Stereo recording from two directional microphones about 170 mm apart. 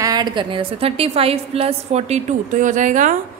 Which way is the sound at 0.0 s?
25° right (ahead or behind).